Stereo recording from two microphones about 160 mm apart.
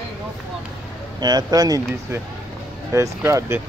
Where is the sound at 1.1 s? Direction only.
25° right (ahead or behind).